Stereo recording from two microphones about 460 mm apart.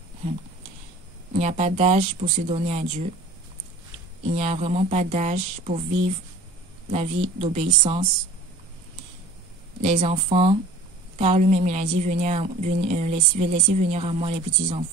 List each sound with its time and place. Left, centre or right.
1.4 s a woman's voice: centre
4.4 s a woman's voice: centre
6.9 s a woman's voice: centre
9.8 s a woman's voice: centre